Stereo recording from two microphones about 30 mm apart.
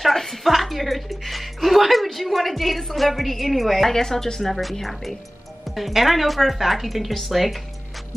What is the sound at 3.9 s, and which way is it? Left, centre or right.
Speech, centre.